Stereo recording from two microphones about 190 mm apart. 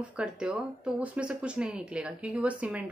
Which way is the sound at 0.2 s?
5° right (ahead or behind).